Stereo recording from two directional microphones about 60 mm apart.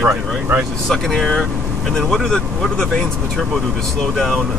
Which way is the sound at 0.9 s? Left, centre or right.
Centre.